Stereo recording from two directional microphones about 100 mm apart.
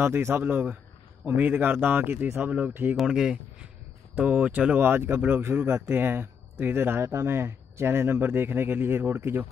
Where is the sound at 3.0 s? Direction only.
5° right (ahead or behind).